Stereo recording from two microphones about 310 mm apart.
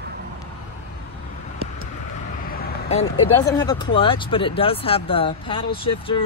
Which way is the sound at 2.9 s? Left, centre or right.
Centre.